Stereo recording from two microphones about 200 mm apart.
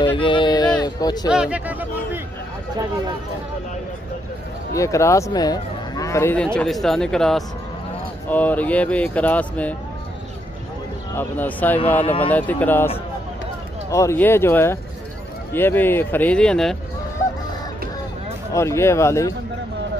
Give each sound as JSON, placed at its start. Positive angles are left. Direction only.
{"t": 0.0, "sound": "a sound", "side_deg": 25}
{"t": 1.3, "sound": "speech", "side_deg": -5}
{"t": 4.7, "sound": "speech", "side_deg": 15}
{"t": 11.1, "sound": "speech", "side_deg": 10}
{"t": 12.0, "sound": "speech", "side_deg": 30}
{"t": 12.3, "sound": "speech", "side_deg": 10}
{"t": 18.5, "sound": "speech", "side_deg": 15}